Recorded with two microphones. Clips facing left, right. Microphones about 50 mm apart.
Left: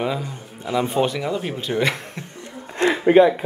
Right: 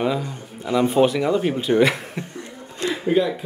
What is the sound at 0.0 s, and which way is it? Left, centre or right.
Speech, centre.